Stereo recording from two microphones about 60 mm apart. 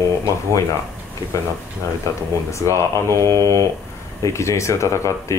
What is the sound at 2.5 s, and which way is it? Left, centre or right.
Speech, left.